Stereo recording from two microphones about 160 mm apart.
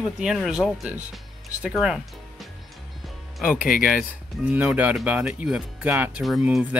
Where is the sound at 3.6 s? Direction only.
60° left (ahead or behind).